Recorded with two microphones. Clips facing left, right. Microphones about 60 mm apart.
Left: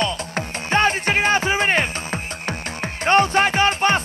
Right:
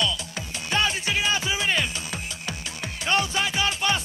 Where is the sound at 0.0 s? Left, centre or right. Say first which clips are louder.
Left 5 dB; left.